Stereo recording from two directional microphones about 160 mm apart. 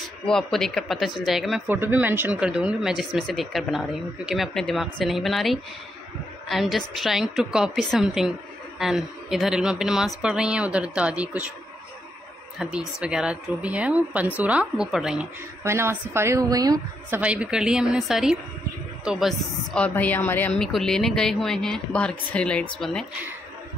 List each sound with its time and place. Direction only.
0.3 s a woman's voice: centre (ahead or behind)
1.7 s a woman's voice: 10° right (ahead or behind)
12.5 s speech: 5° right (ahead or behind)
15.6 s speech: 15° right (ahead or behind)
17.2 s a woman's voice: 5° right (ahead or behind)